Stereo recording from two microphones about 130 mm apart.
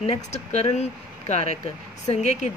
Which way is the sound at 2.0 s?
65° left (ahead or behind).